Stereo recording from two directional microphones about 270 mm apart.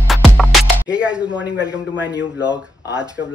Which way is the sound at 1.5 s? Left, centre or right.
Centre.